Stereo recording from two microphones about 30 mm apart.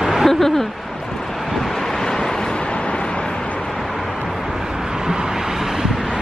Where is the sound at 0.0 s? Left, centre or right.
Centre.